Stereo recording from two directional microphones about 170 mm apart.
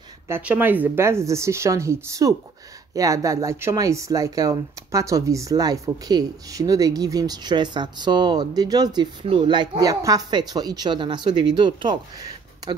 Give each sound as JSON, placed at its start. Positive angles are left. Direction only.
{"t": 0.3, "sound": "speech", "side_deg": -10}